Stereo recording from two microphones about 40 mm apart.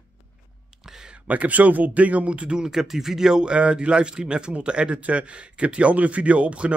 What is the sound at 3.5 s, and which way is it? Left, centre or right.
Speech, right.